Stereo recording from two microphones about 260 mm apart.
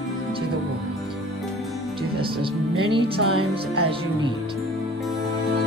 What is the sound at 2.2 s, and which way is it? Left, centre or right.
Speech, centre.